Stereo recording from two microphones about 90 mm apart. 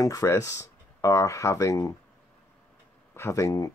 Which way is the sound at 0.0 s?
40° left (ahead or behind).